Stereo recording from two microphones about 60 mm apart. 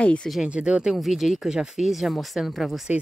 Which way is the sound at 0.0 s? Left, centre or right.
Centre.